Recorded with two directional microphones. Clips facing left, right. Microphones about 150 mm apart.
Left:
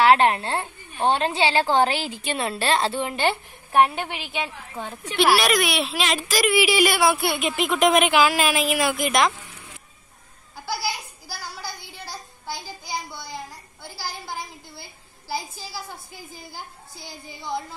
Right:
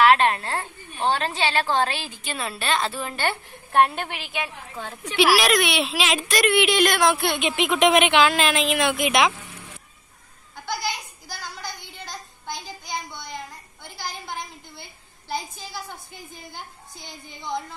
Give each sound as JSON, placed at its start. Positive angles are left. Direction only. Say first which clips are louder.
{"t": 0.0, "sound": "a woman's voice", "louder": "left 1 dB", "side_deg": 25}
{"t": 10.5, "sound": "a sound", "louder": "even", "side_deg": 5}
{"t": 13.8, "sound": "a woman's voice", "louder": "even", "side_deg": 5}